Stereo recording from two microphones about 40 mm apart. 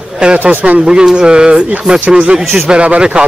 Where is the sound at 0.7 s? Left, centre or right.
Centre.